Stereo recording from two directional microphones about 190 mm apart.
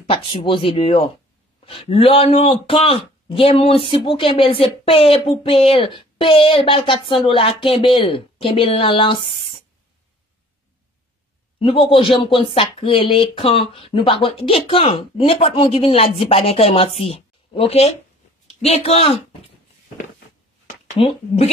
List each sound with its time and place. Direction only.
0.0 s speech: 30° left (ahead or behind)
9.3 s a sound: 30° left (ahead or behind)
11.6 s a man's voice: 25° left (ahead or behind)
21.0 s speech: 30° left (ahead or behind)